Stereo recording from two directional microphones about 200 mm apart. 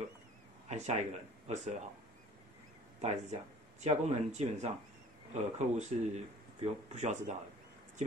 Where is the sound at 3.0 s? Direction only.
35° right (ahead or behind).